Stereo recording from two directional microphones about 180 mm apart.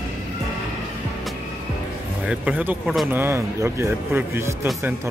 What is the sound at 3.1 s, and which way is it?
A man's voice, 15° right (ahead or behind).